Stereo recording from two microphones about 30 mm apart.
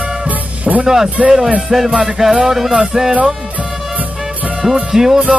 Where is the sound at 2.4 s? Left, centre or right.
Centre.